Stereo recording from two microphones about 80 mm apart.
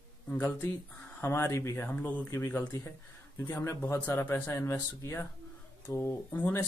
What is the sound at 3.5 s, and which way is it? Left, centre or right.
Speech, left.